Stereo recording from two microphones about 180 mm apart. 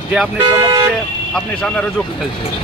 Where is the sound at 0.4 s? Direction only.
20° right (ahead or behind).